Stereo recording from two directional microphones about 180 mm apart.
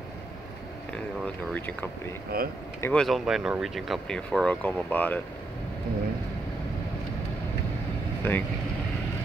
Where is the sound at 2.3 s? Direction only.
55° right (ahead or behind).